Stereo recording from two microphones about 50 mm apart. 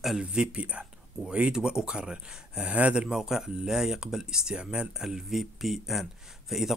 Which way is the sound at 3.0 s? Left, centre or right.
Centre.